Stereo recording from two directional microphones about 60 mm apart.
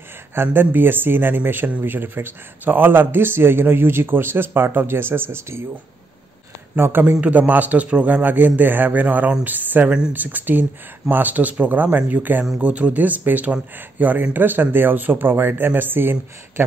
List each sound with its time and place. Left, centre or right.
0.3 s speech: right
6.7 s speech: right
7.2 s a man's voice: right